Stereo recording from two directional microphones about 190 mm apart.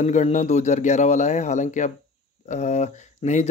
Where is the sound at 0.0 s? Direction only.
40° left (ahead or behind).